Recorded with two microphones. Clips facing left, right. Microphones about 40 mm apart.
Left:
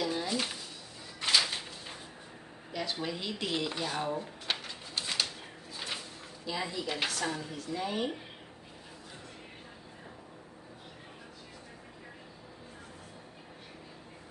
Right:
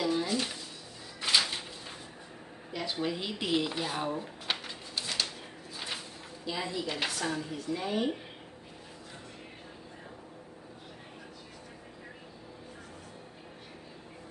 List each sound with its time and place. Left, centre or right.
0.0 s a sound: centre
2.7 s speech: centre
5.0 s bird: centre
6.4 s speech: centre